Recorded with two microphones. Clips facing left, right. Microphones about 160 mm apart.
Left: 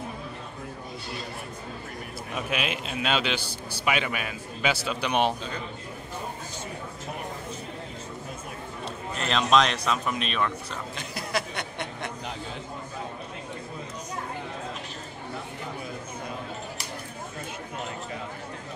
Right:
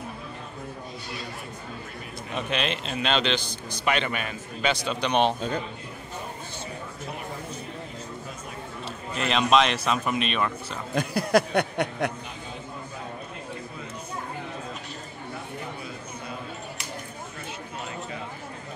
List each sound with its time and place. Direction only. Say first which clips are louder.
2.3 s a man's voice: right 2 dB; 5° left (ahead or behind)
8.8 s speech: right 2 dB; 5° right (ahead or behind)
11.0 s speech: right 11 dB; 50° right (ahead or behind)